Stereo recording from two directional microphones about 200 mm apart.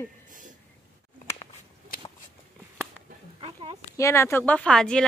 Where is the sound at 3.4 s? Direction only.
25° right (ahead or behind).